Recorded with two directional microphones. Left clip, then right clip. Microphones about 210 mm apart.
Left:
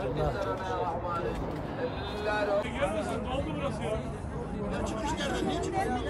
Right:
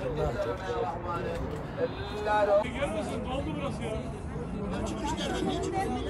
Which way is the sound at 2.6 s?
Centre (ahead or behind).